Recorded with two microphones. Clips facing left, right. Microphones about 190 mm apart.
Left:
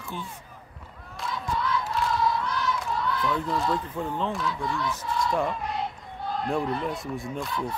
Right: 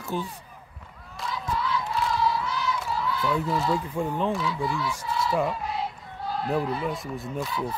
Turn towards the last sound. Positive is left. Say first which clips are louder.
# right 1 dB
turn(degrees=-5)  # may be behind; listen again after turning